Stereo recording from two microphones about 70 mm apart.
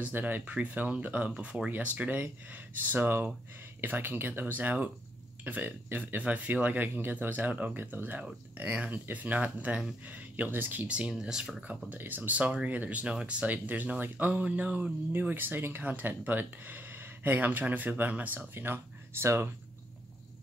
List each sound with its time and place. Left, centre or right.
0.0 s speech: right
10.9 s speech: centre
11.9 s speech: right